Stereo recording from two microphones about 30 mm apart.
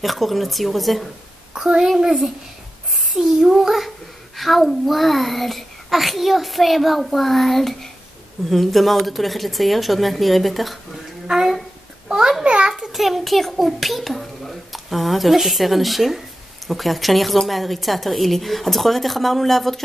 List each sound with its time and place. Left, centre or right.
0.0 s a child's voice: centre
1.5 s a child's voice: centre
2.0 s a child's voice: centre
3.2 s a sound: centre
3.5 s a child's voice: centre
12.4 s a sound: right
12.9 s a child's voice: centre